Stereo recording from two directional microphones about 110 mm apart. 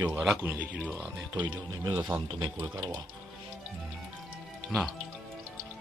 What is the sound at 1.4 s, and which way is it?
Speech, 40° right (ahead or behind).